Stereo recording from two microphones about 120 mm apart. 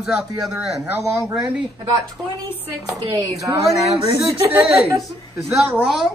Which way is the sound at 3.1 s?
25° right (ahead or behind).